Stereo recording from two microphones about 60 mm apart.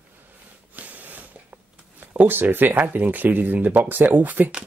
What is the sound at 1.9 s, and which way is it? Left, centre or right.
Speech, right.